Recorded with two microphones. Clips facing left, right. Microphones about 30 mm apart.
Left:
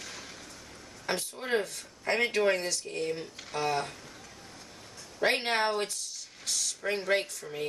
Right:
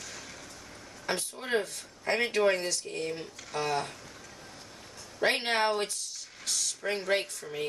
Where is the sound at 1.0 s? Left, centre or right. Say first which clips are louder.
Even; centre.